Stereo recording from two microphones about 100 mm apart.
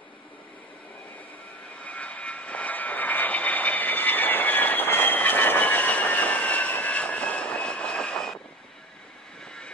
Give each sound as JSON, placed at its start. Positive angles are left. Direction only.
{"t": 1.9, "sound": "vehicle", "side_deg": 15}